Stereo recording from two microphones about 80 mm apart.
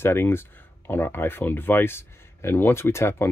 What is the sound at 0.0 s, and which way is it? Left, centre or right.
Speech, left.